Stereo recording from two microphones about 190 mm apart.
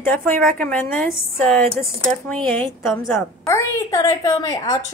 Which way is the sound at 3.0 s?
15° left (ahead or behind).